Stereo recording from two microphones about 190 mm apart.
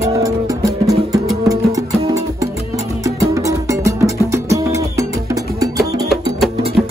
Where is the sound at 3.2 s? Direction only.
15° right (ahead or behind).